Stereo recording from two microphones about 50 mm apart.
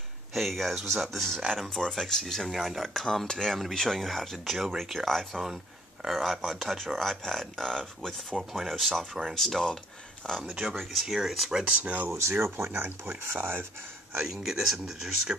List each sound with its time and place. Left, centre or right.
0.3 s speech: centre
10.4 s speech: centre
10.8 s speech: centre
11.6 s speech: right
13.2 s speech: right
14.3 s speech: centre